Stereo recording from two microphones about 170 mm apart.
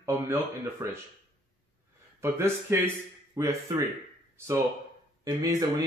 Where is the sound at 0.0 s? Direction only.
15° right (ahead or behind).